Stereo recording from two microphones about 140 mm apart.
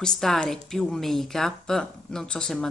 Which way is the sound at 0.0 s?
5° left (ahead or behind).